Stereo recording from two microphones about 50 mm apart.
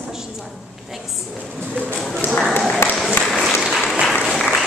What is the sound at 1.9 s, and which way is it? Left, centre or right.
Speech, centre.